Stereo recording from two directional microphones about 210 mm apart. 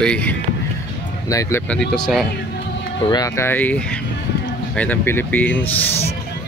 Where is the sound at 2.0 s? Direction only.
Centre (ahead or behind).